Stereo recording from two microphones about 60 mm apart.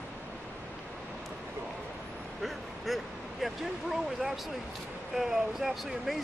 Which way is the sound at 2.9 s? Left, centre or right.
Centre.